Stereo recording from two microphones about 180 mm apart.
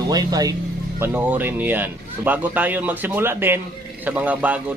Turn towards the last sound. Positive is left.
turn(degrees=-10)  # may be behind; listen again after turning